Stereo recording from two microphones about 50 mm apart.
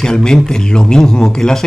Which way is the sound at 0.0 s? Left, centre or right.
Centre.